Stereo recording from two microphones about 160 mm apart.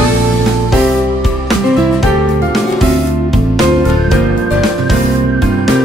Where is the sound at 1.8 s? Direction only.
Centre (ahead or behind).